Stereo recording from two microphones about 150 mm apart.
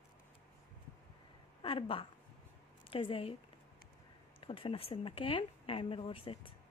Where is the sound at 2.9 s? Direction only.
35° left (ahead or behind).